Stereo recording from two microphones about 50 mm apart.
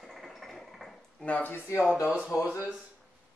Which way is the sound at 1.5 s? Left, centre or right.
Left.